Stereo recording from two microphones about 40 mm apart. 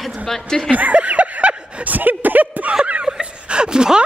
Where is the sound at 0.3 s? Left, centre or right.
Centre.